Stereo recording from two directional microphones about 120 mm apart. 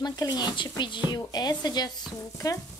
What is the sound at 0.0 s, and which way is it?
Stir, 35° left (ahead or behind).